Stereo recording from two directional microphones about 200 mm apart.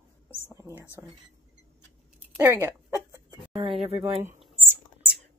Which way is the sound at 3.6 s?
30° right (ahead or behind).